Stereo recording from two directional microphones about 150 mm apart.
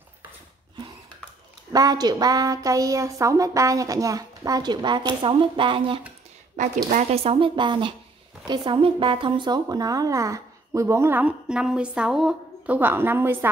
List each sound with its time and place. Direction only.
1.7 s a woman's voice: 25° right (ahead or behind)
6.6 s a woman's voice: 60° right (ahead or behind)
6.9 s speech: 45° right (ahead or behind); by 13.5 s 15° right (ahead or behind)